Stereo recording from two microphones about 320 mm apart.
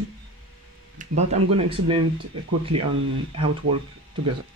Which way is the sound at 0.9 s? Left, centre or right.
Right.